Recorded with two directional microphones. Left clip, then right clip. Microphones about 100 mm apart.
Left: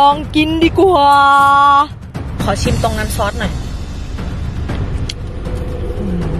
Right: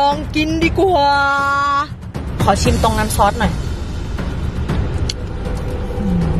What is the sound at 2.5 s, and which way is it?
Speech, 25° right (ahead or behind).